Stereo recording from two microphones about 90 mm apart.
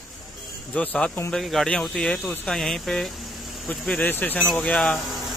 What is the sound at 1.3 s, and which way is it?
Speech, centre (ahead or behind).